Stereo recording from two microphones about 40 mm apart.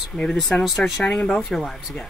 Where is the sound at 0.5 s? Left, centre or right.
Left.